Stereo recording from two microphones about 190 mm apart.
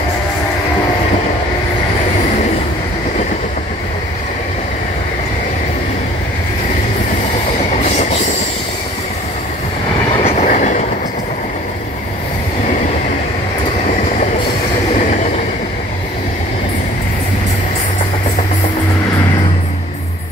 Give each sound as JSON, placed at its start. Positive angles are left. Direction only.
{"t": 10.2, "sound": "train", "side_deg": 35}